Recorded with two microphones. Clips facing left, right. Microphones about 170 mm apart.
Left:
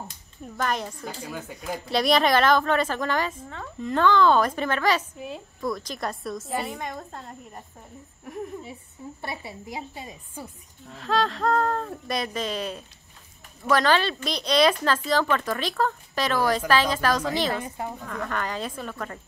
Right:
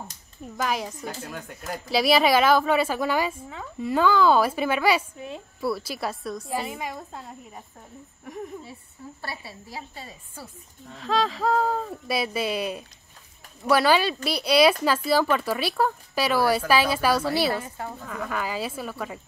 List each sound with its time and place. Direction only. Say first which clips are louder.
0.6 s a woman's voice: even; 5° right (ahead or behind)
5.1 s a woman's voice: left 1 dB; centre (ahead or behind)
8.3 s a sound: left 1 dB; centre (ahead or behind)
9.2 s a woman's voice: left 3 dB; 20° left (ahead or behind)
10.9 s a woman's voice: even; centre (ahead or behind)
17.6 s speech: left 2 dB; 15° left (ahead or behind)
18.0 s a woman's voice: right 1 dB; 5° right (ahead or behind)